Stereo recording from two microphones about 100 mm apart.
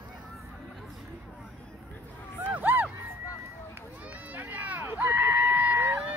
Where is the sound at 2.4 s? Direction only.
15° right (ahead or behind).